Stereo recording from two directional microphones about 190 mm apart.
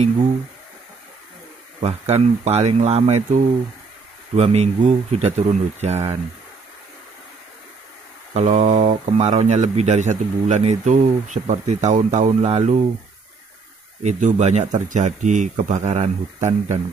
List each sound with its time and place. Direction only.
1.8 s speech: 35° right (ahead or behind)
8.3 s speech: 40° right (ahead or behind)
14.0 s speech: 35° right (ahead or behind)